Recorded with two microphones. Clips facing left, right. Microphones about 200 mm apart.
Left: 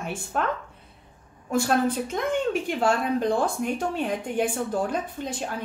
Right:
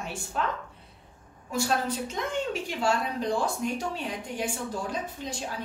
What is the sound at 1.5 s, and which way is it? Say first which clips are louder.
A woman's voice: left 5 dB; 55° left (ahead or behind).